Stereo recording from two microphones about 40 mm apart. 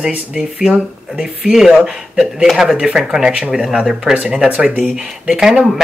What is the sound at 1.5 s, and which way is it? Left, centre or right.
Speech, centre.